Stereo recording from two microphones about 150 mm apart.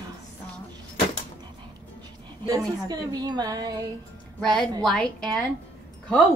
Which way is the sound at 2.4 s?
25° right (ahead or behind).